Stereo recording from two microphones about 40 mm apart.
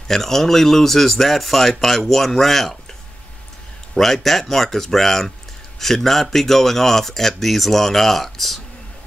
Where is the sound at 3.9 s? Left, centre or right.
Centre.